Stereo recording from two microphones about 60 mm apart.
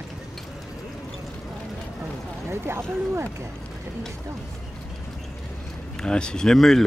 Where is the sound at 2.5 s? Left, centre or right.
Right.